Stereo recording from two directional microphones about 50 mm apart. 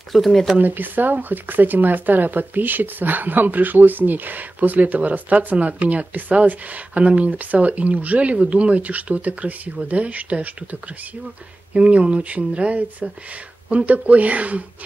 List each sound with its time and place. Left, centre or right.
0.1 s speech: centre
0.6 s speech: right